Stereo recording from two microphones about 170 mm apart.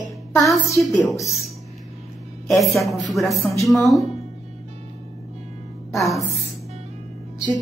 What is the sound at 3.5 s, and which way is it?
Speech, 20° left (ahead or behind).